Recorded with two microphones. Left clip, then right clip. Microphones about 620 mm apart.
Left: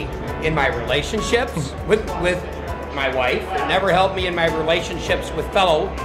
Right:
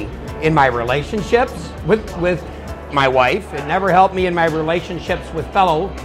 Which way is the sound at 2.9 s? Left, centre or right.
Right.